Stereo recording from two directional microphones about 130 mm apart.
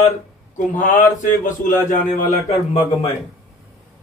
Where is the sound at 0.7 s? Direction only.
70° left (ahead or behind).